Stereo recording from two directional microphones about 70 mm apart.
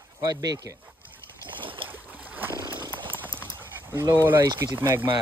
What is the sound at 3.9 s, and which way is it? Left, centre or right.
Speech, right.